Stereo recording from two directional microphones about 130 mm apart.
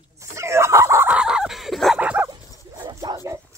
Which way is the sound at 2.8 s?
25° right (ahead or behind).